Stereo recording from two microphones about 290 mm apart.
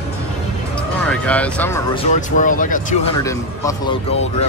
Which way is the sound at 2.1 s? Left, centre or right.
Left.